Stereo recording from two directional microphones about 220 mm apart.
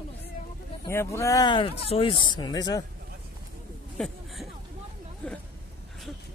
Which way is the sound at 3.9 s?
Centre (ahead or behind).